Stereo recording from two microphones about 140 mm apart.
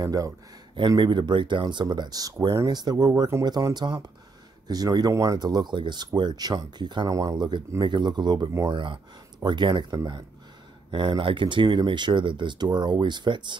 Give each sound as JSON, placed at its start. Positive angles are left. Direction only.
{"t": 0.0, "sound": "speech", "side_deg": -25}
{"t": 0.7, "sound": "speech", "side_deg": -35}